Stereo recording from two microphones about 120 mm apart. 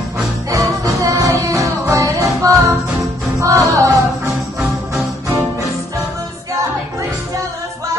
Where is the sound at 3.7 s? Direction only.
25° right (ahead or behind).